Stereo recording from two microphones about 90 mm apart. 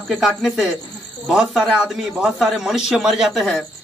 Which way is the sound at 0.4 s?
Centre (ahead or behind).